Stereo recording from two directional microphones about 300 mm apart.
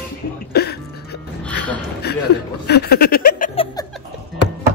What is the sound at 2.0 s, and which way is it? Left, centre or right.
Chuckle, left.